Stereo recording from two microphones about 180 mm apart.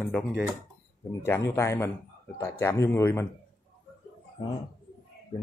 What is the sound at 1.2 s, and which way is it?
Speech, 15° left (ahead or behind).